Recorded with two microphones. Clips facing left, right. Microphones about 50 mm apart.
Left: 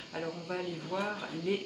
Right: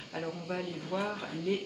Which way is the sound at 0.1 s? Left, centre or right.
Centre.